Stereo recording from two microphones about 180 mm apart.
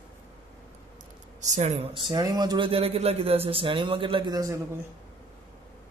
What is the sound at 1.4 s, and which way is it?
Speech, 40° right (ahead or behind).